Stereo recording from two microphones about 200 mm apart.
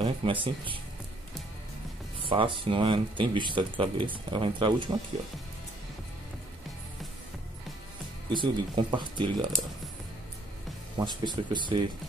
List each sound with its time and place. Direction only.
0.0 s speech: 25° right (ahead or behind)
2.2 s speech: 25° right (ahead or behind)
8.3 s speech: 25° right (ahead or behind)
11.0 s speech: 20° right (ahead or behind)